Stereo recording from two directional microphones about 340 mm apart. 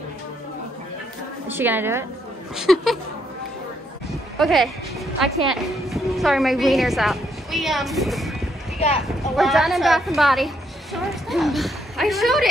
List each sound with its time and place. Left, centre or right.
1.5 s a woman's voice: centre
4.4 s a woman's voice: centre
8.7 s speech: centre
9.0 s a woman's voice: centre